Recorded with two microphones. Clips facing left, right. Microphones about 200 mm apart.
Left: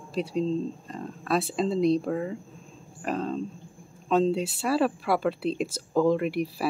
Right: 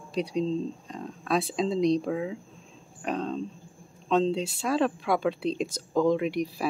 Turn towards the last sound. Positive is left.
turn(degrees=5)  # may be behind; listen again after turning